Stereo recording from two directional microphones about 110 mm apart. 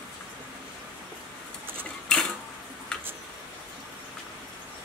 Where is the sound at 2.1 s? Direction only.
10° left (ahead or behind).